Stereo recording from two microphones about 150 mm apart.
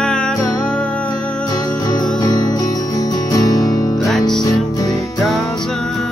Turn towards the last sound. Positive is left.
turn(degrees=0)  # may be behind; listen again after turning